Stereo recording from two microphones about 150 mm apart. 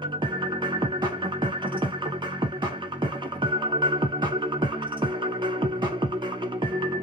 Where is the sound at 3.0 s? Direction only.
30° right (ahead or behind).